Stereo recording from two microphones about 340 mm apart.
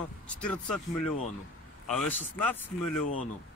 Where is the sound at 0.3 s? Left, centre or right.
Centre.